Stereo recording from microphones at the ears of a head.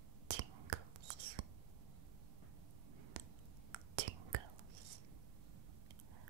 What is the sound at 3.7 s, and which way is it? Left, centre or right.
Whispering, right.